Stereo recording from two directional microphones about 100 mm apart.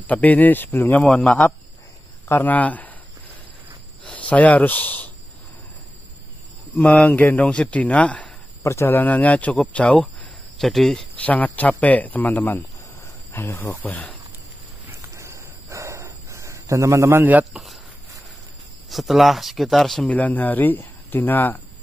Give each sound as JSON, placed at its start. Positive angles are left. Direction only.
{"t": 0.0, "sound": "speech", "side_deg": 15}
{"t": 2.2, "sound": "speech", "side_deg": 20}
{"t": 4.0, "sound": "speech", "side_deg": 15}
{"t": 6.8, "sound": "speech", "side_deg": 15}
{"t": 8.6, "sound": "speech", "side_deg": 25}
{"t": 10.6, "sound": "speech", "side_deg": 5}
{"t": 11.2, "sound": "speech", "side_deg": 15}
{"t": 14.9, "sound": "a sound", "side_deg": -30}
{"t": 17.5, "sound": "speech", "side_deg": 0}
{"t": 18.9, "sound": "speech", "side_deg": 0}
{"t": 20.1, "sound": "speech", "side_deg": 15}